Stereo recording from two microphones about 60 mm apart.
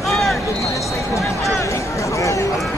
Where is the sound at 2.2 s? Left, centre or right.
Left.